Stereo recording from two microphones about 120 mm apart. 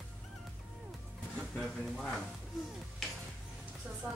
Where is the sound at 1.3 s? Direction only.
5° left (ahead or behind).